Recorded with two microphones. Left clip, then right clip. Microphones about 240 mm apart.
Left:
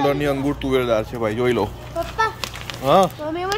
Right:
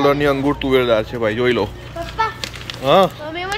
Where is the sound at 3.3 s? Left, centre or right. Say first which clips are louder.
Even; left.